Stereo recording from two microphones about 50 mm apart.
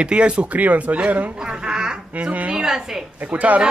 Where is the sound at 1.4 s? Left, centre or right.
Centre.